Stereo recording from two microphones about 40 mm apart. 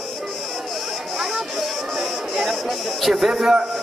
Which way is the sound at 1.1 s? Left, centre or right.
Centre.